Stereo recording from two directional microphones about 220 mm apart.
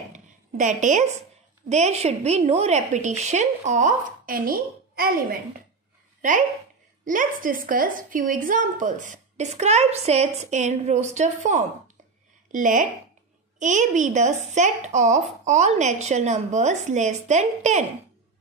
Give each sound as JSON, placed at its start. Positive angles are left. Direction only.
{"t": 0.1, "sound": "a sound", "side_deg": -35}
{"t": 1.7, "sound": "a woman's voice", "side_deg": -30}
{"t": 7.1, "sound": "a woman's voice", "side_deg": -35}